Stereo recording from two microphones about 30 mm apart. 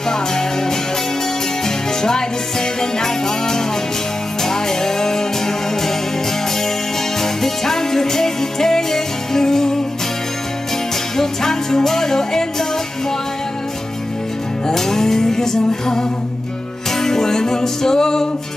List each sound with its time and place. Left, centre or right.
0.1 s music: centre
2.0 s music: centre
7.2 s music: centre
11.1 s music: centre
14.7 s music: centre